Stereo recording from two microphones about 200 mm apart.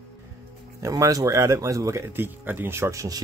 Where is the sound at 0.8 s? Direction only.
15° right (ahead or behind).